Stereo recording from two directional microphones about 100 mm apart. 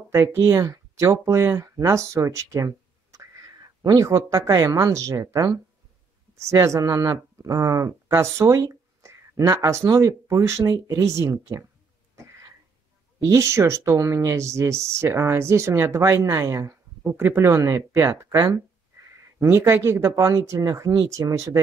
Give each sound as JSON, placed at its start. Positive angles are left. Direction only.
{"t": 0.1, "sound": "speech", "side_deg": -30}
{"t": 13.2, "sound": "speech", "side_deg": -30}